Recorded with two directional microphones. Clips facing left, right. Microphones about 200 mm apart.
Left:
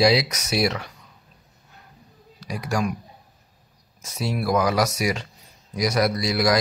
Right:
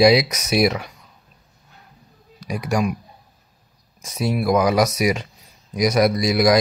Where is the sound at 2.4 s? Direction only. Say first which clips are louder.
Right 4 dB; 20° right (ahead or behind).